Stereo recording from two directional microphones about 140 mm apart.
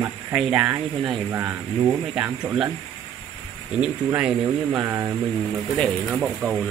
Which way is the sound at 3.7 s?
5° right (ahead or behind).